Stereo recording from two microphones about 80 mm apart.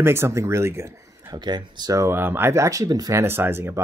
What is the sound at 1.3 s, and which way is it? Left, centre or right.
Speech, right.